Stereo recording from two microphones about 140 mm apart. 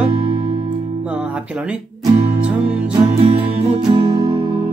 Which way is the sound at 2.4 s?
10° right (ahead or behind).